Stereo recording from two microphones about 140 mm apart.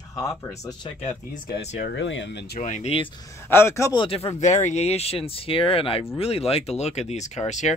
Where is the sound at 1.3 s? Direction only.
65° left (ahead or behind).